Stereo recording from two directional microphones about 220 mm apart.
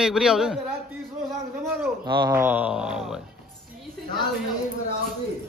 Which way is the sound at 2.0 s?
20° right (ahead or behind).